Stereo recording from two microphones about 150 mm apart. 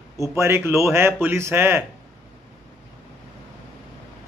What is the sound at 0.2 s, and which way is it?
A man's voice, 20° right (ahead or behind).